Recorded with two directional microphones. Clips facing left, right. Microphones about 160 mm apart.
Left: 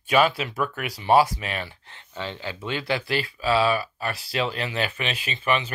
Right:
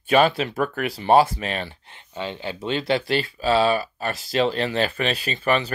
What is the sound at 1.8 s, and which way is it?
Speech, 20° right (ahead or behind).